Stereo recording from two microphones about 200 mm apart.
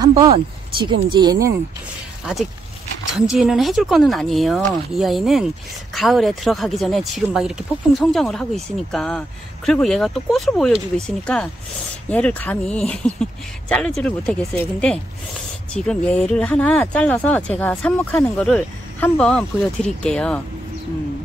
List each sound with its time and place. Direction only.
0.0 s speech: 20° right (ahead or behind)
2.2 s speech: 5° right (ahead or behind)